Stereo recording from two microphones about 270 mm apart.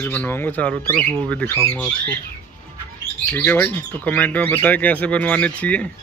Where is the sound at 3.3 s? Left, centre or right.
Centre.